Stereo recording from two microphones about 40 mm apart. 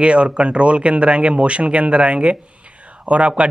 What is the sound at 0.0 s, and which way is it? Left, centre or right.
A man's voice, right.